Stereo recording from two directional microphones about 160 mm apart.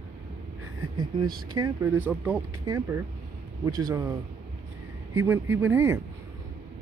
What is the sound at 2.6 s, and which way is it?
A man's voice, 20° right (ahead or behind).